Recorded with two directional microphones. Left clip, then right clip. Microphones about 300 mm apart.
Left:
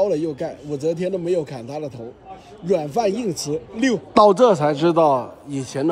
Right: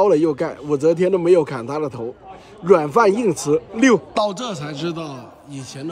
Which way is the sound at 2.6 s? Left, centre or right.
Right.